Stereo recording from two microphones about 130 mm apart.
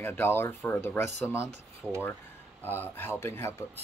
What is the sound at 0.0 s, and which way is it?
Speech, 15° left (ahead or behind).